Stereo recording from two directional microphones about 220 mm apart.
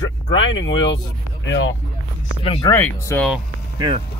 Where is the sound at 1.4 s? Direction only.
55° left (ahead or behind).